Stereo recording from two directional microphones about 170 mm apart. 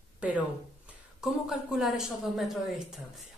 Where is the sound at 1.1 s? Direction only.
Centre (ahead or behind).